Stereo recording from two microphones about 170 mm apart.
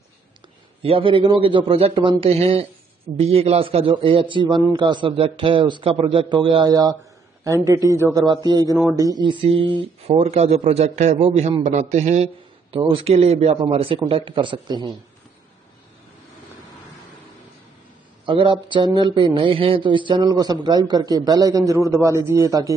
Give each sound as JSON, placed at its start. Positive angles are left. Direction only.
{"t": 0.8, "sound": "a man's voice", "side_deg": -30}
{"t": 18.2, "sound": "a man's voice", "side_deg": -30}